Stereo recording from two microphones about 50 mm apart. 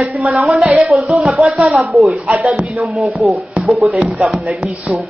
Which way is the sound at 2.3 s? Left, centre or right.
Right.